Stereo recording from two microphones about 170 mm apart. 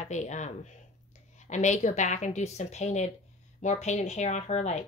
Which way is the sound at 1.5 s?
45° left (ahead or behind).